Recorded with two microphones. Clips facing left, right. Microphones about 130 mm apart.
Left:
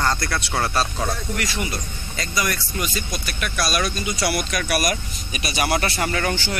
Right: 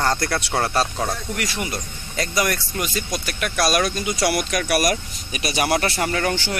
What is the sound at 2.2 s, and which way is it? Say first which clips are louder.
Speech: right 3 dB; 60° right (ahead or behind).